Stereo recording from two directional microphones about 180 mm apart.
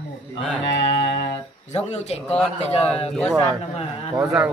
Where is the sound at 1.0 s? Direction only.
70° left (ahead or behind).